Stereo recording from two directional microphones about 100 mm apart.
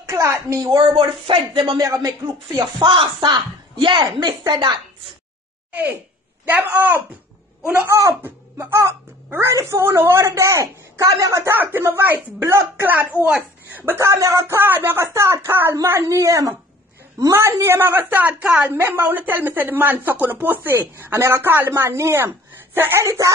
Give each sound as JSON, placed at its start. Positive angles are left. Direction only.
{"t": 0.0, "sound": "a woman's voice", "side_deg": -30}
{"t": 1.8, "sound": "a woman's voice", "side_deg": -35}
{"t": 4.5, "sound": "a woman's voice", "side_deg": -55}
{"t": 5.7, "sound": "a woman's voice", "side_deg": -15}
{"t": 7.9, "sound": "a woman's voice", "side_deg": -30}
{"t": 11.5, "sound": "a woman's voice", "side_deg": -20}
{"t": 13.8, "sound": "a woman's voice", "side_deg": -30}